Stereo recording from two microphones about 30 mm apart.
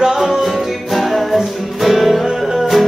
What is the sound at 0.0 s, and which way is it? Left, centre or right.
Music, centre.